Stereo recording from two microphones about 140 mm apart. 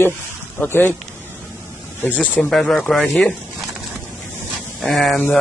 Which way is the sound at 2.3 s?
5° left (ahead or behind).